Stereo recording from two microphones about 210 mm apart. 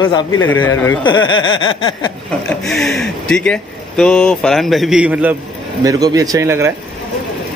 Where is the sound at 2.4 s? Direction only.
Centre (ahead or behind).